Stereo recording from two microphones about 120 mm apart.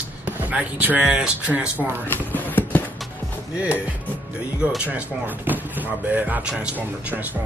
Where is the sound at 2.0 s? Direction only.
15° left (ahead or behind).